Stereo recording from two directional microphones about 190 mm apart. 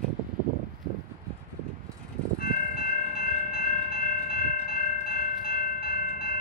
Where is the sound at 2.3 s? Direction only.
50° left (ahead or behind).